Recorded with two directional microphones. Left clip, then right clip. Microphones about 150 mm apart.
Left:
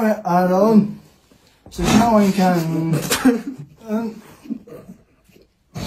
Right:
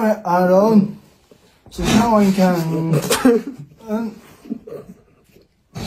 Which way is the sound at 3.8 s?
25° right (ahead or behind).